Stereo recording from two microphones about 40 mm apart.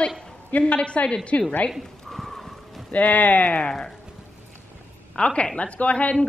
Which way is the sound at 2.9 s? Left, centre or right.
Left.